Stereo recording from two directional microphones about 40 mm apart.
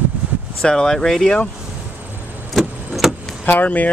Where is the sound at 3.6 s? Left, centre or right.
Left.